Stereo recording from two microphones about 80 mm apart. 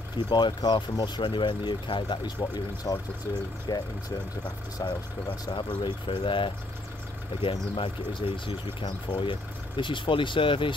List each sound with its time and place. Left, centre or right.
0.3 s speech: left
5.5 s speech: left